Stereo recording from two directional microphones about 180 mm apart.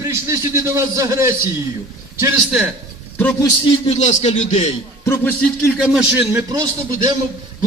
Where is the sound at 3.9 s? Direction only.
40° left (ahead or behind).